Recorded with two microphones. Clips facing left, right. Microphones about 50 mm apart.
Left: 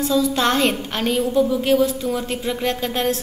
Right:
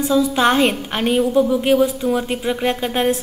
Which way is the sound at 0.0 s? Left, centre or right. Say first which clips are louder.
Right 3 dB; centre.